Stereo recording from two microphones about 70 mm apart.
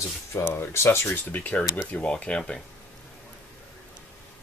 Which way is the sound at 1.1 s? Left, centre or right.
Left.